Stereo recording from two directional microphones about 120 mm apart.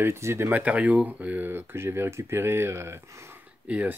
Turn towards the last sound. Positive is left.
turn(degrees=-10)  # may be behind; listen again after turning